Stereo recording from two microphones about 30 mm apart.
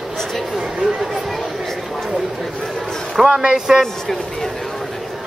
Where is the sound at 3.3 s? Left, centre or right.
Right.